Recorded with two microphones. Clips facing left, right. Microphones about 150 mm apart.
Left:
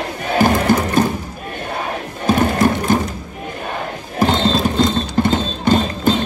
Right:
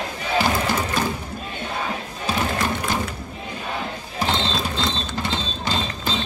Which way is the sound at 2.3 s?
50° left (ahead or behind).